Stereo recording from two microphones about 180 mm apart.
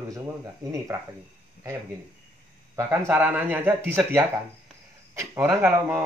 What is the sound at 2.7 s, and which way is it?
Speech, 15° right (ahead or behind).